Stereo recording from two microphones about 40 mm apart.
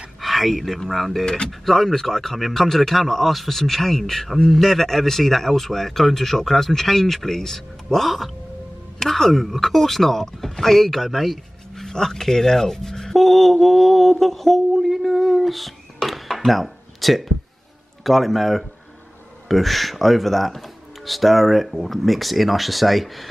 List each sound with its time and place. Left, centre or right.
0.2 s a sound: centre
0.7 s speech: centre
1.2 s a man's voice: centre
11.7 s speech: centre